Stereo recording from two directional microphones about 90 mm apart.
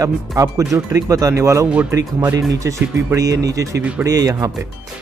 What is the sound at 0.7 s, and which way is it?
Speech, 40° right (ahead or behind).